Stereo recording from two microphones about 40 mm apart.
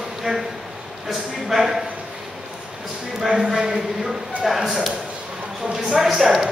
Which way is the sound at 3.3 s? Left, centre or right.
Centre.